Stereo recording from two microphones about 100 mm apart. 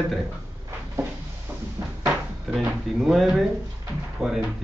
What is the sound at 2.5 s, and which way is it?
Speech, 5° left (ahead or behind).